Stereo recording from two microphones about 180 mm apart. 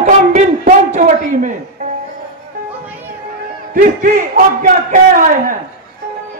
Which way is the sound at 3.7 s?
50° right (ahead or behind).